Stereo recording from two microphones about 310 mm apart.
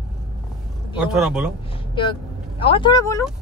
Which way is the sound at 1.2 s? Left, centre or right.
Centre.